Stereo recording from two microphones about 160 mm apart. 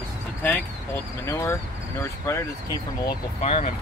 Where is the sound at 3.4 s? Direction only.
40° left (ahead or behind).